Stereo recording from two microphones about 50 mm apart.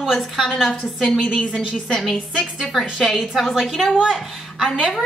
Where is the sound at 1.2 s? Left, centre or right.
Left.